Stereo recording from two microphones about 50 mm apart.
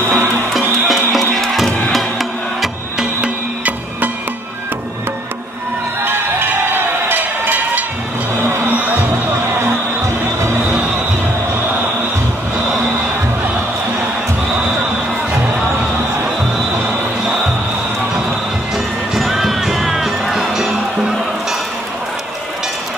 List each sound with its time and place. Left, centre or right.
0.1 s music: right
0.5 s music: centre
6.0 s music: right
9.5 s music: right
19.1 s music: centre